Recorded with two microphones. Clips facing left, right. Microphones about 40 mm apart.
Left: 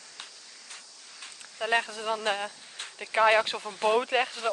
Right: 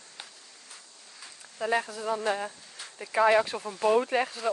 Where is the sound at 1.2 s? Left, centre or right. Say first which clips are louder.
Right 1 dB; left.